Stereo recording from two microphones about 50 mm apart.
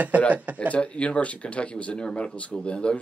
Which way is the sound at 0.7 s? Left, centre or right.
Left.